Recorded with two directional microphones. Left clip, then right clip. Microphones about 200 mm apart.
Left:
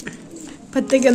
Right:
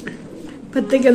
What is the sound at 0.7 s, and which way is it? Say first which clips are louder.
Speech: even; 55° left (ahead or behind).